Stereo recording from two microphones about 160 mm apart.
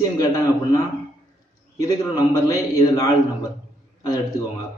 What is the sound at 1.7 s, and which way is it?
A man's voice, 20° left (ahead or behind).